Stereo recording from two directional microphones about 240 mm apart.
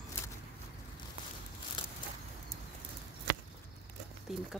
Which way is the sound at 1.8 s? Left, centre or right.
Centre.